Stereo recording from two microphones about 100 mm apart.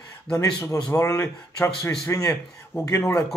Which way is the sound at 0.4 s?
30° left (ahead or behind).